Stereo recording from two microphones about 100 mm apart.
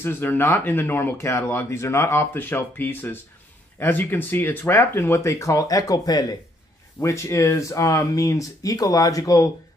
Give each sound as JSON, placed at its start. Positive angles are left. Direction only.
{"t": 0.0, "sound": "speech", "side_deg": 20}